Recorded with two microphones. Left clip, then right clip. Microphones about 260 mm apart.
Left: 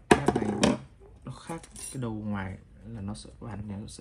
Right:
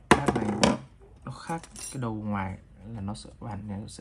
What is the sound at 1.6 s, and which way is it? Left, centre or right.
Speech, centre.